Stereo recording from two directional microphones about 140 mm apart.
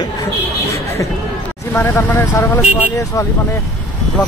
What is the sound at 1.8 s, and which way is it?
Speech, 15° left (ahead or behind).